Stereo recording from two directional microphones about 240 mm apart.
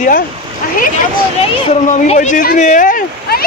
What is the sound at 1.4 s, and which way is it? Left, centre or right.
Speech, left.